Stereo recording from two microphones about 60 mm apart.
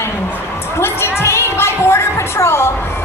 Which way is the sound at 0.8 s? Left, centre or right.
Left.